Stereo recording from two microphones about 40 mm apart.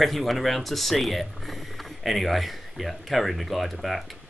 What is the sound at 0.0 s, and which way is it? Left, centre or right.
Speech, centre.